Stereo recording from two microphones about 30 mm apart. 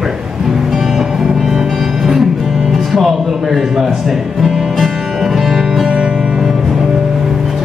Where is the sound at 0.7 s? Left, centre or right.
Centre.